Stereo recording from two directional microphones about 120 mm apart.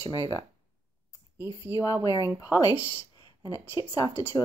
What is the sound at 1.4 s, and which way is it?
Speech, 20° right (ahead or behind).